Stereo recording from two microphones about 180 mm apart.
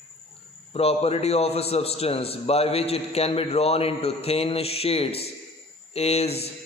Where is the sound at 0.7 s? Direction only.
35° left (ahead or behind).